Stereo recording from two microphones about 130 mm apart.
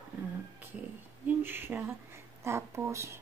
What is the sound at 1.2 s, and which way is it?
Speech, 15° right (ahead or behind).